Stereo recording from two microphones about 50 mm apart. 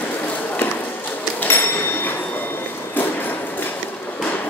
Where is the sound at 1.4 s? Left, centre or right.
Left.